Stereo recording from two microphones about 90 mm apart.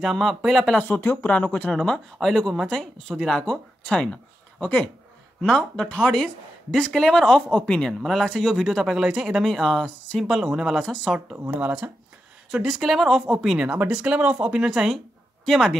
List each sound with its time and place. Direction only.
0.0 s speech: centre (ahead or behind)
0.7 s speech: 20° left (ahead or behind)
1.7 s speech: 5° left (ahead or behind)
11.1 s speech: 20° right (ahead or behind)
12.4 s speech: 5° right (ahead or behind)